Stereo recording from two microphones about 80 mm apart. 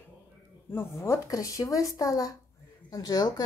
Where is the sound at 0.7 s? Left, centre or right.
Left.